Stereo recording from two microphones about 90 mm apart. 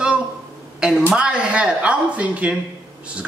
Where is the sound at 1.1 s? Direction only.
10° right (ahead or behind).